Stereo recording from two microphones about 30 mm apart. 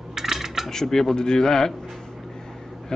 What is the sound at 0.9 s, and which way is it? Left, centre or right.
Speech, centre.